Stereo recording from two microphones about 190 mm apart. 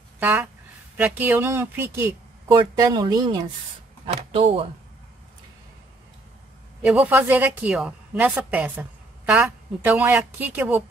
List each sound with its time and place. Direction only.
0.2 s a woman's voice: 10° right (ahead or behind)
2.4 s speech: 25° right (ahead or behind)
4.0 s speech: 30° right (ahead or behind)
6.8 s a woman's voice: 5° right (ahead or behind)